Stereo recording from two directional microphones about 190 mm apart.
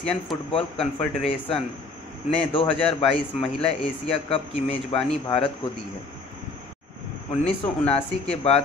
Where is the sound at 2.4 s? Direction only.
30° left (ahead or behind).